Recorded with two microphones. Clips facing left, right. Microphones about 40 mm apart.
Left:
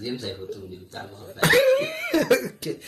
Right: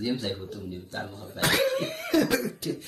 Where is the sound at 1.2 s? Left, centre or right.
Left.